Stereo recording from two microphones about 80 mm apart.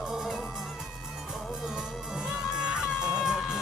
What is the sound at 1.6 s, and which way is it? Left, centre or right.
Music, centre.